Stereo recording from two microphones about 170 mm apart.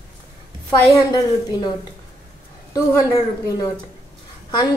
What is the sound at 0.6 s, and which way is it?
Speech, 20° left (ahead or behind).